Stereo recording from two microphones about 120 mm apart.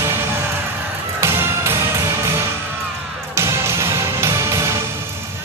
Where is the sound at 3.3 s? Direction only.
25° right (ahead or behind).